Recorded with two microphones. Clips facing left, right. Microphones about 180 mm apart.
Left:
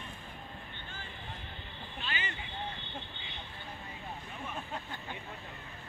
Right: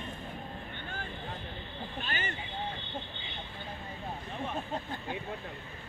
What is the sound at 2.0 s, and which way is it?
Speech, 50° right (ahead or behind).